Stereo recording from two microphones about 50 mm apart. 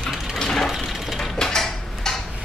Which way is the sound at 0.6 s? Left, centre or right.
Centre.